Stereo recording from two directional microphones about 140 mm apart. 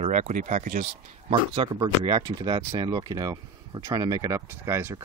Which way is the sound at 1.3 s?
35° right (ahead or behind).